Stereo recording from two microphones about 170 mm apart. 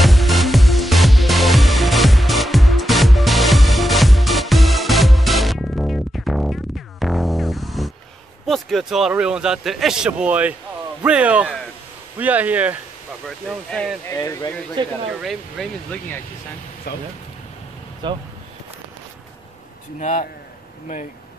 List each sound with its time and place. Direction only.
0.0 s music: centre (ahead or behind)
8.5 s a man's voice: centre (ahead or behind)
13.5 s a man's voice: centre (ahead or behind)
14.0 s speech: 15° left (ahead or behind)
15.2 s a man's voice: centre (ahead or behind)
16.9 s speech: 70° left (ahead or behind)
18.0 s speech: 25° right (ahead or behind)
20.0 s speech: 50° left (ahead or behind)